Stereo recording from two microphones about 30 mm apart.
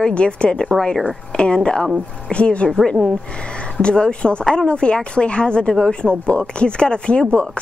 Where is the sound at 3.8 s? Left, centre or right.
Left.